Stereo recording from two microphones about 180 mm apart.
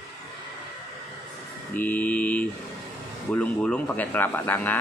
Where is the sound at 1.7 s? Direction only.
10° left (ahead or behind).